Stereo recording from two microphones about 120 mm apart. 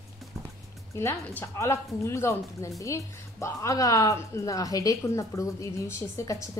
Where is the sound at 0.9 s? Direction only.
20° left (ahead or behind).